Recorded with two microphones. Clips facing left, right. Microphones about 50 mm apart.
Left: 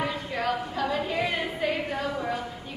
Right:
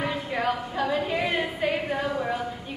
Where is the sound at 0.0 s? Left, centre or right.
Centre.